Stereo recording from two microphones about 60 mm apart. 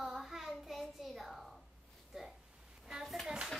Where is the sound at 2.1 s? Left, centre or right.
Centre.